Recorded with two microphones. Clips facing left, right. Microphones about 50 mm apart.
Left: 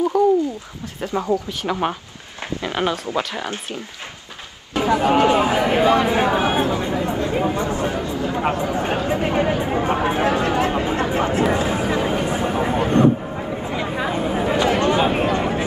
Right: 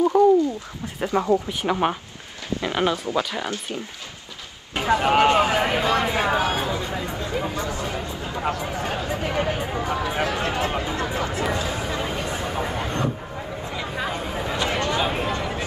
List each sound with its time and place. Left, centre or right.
0.1 s speech: centre
1.7 s speech: centre
2.8 s speech: left
5.0 s speech: right
5.3 s speech: left
5.7 s chatter: left
11.5 s vehicle: left
13.7 s a sound: centre
14.1 s chatter: left